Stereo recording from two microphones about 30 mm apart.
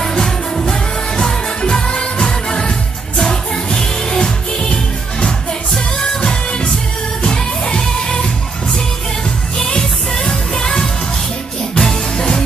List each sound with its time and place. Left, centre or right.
0.2 s music: left
3.2 s music: left
5.9 s music: left
9.7 s music: left